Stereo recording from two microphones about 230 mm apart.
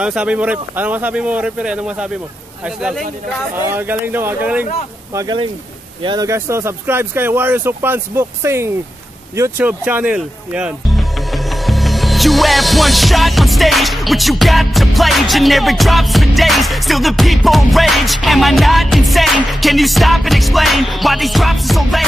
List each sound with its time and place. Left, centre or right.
0.0 s speech: centre